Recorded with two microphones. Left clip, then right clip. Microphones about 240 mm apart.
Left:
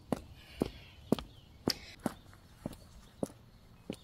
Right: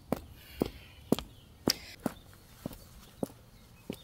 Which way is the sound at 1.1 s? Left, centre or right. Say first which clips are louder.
Right 2 dB; right.